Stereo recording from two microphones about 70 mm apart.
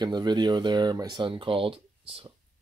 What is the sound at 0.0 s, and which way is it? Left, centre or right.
Speech, right.